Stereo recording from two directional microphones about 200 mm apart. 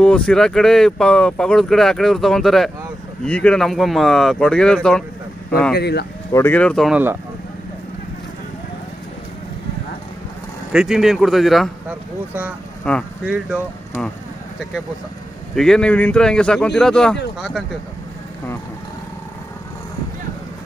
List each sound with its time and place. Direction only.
0.0 s speech: 5° left (ahead or behind)
5.8 s speech: 55° left (ahead or behind)
6.3 s speech: 10° left (ahead or behind)
10.7 s speech: 5° right (ahead or behind)
12.9 s speech: 5° left (ahead or behind)
13.2 s speech: 5° right (ahead or behind)
15.5 s speech: centre (ahead or behind)